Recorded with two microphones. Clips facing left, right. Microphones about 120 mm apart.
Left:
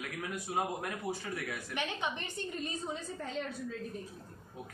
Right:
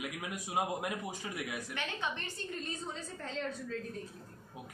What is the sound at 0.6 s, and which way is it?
Speech, 15° right (ahead or behind).